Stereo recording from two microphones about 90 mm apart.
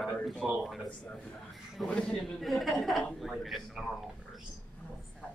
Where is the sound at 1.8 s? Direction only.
10° left (ahead or behind).